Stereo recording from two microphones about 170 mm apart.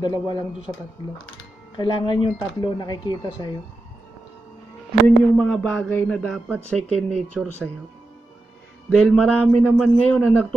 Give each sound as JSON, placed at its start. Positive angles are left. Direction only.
{"t": 0.0, "sound": "speech", "side_deg": 25}
{"t": 1.8, "sound": "speech", "side_deg": 25}
{"t": 5.0, "sound": "speech", "side_deg": 5}
{"t": 5.9, "sound": "a sound", "side_deg": 10}
{"t": 6.8, "sound": "speech", "side_deg": -40}
{"t": 8.9, "sound": "a sound", "side_deg": 5}